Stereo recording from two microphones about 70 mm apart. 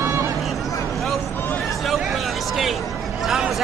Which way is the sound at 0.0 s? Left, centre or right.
Right.